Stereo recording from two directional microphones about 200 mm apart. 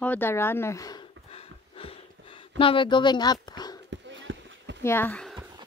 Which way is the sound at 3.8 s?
65° right (ahead or behind).